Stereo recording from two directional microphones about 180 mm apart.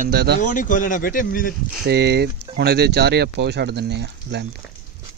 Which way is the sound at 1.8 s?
65° right (ahead or behind).